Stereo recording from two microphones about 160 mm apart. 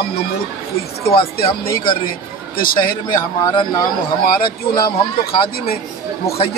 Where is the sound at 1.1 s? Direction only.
35° left (ahead or behind).